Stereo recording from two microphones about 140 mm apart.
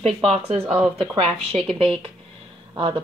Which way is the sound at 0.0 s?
45° right (ahead or behind).